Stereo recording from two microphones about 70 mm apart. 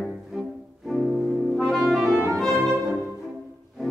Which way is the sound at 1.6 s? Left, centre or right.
Centre.